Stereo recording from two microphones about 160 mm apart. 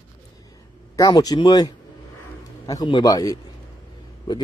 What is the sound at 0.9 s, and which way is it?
Speech, 20° left (ahead or behind).